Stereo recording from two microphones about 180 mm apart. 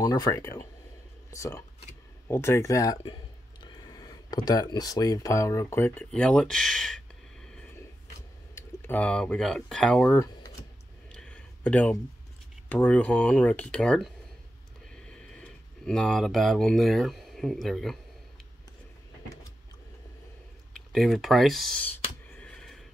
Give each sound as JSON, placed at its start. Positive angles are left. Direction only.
{"t": 0.0, "sound": "speech", "side_deg": 20}
{"t": 10.1, "sound": "computer keyboard", "side_deg": 20}
{"t": 11.1, "sound": "a sound", "side_deg": 5}
{"t": 12.6, "sound": "speech", "side_deg": 10}
{"t": 20.7, "sound": "clicking", "side_deg": 0}